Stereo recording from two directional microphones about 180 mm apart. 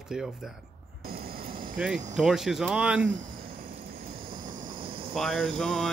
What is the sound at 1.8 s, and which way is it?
Speech, 5° right (ahead or behind).